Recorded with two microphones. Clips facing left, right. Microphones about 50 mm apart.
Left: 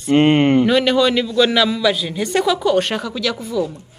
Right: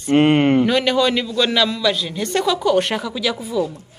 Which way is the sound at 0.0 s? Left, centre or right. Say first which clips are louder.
Left 1 dB; centre.